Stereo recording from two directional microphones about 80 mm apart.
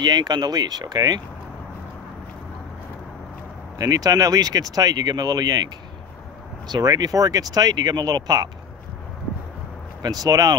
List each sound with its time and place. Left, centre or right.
0.0 s speech: right
3.7 s speech: right
6.7 s speech: right
10.0 s speech: right